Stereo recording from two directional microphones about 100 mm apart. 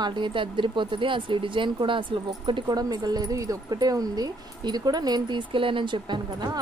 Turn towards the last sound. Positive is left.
turn(degrees=-45)  # may be behind; listen again after turning